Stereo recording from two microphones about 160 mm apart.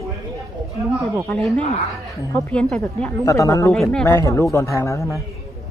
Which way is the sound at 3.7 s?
5° left (ahead or behind).